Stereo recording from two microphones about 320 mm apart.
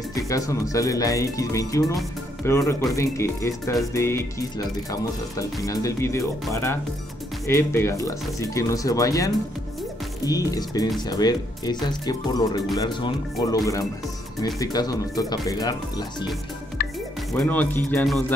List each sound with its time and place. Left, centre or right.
0.3 s speech: centre
17.3 s speech: centre